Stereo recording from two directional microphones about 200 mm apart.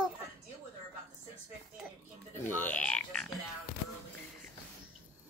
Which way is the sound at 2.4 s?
10° left (ahead or behind).